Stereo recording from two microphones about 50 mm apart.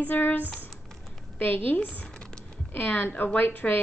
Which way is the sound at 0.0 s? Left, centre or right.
Left.